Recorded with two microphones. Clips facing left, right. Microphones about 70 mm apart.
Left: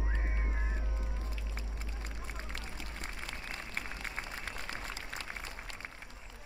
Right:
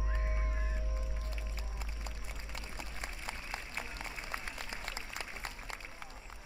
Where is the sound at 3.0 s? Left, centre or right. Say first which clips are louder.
Left 1 dB; right.